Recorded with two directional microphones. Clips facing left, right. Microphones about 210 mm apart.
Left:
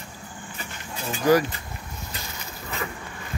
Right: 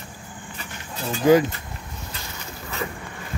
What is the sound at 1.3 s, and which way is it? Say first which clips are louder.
Speech: right 3 dB; 20° right (ahead or behind).